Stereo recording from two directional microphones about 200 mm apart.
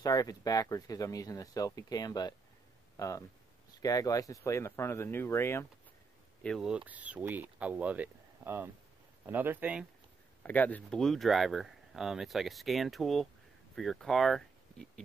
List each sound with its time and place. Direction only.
0.0 s speech: 15° left (ahead or behind)
6.4 s speech: centre (ahead or behind)
10.4 s speech: 10° left (ahead or behind)